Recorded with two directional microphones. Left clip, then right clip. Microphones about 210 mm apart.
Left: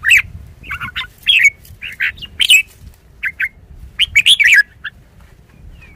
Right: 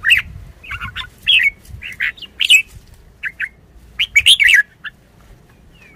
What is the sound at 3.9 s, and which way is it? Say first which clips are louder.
Bird: left 1 dB; 15° left (ahead or behind).